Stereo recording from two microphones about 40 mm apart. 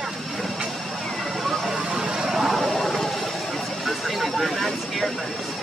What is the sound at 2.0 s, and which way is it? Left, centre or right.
Vehicle, centre.